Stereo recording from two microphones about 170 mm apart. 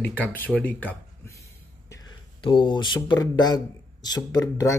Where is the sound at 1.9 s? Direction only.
25° left (ahead or behind).